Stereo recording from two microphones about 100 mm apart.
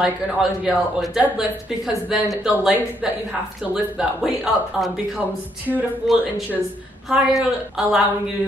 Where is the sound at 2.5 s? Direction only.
15° right (ahead or behind).